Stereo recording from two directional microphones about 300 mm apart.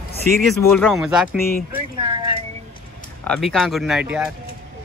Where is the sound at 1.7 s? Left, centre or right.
Centre.